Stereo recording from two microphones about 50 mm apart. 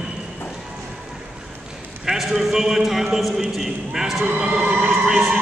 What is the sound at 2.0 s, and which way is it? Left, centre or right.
A man's voice, centre.